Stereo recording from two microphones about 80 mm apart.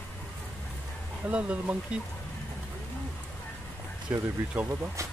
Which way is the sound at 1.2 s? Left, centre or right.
Centre.